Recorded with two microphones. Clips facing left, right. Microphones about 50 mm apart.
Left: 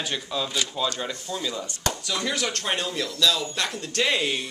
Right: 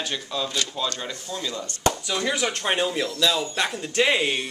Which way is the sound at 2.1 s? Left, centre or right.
Centre.